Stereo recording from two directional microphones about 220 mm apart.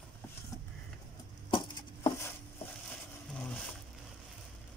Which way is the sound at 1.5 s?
20° left (ahead or behind).